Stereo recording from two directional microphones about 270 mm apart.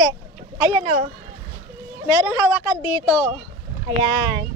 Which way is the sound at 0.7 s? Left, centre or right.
Right.